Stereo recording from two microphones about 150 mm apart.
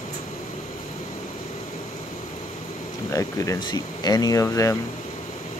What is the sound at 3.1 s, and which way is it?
Speech, 20° left (ahead or behind).